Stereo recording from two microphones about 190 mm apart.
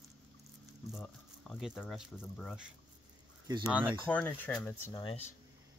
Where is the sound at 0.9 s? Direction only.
Centre (ahead or behind).